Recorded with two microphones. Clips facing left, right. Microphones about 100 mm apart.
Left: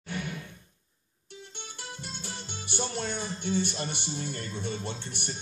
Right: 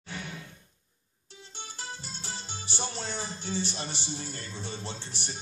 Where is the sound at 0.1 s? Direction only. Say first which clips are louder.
Left 4 dB; 55° left (ahead or behind).